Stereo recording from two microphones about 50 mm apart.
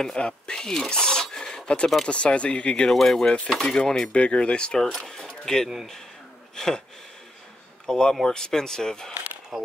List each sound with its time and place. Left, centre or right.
0.0 s speech: centre
2.9 s speech: centre
3.2 s speech: left
3.4 s speech: centre
4.1 s speech: left
7.8 s speech: centre
9.5 s speech: centre